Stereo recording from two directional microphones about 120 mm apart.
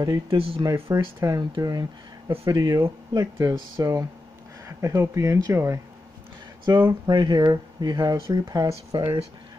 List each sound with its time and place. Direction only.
0.0 s speech: 35° right (ahead or behind)